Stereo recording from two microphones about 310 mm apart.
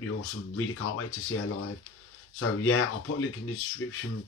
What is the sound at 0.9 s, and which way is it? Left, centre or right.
Speech, left.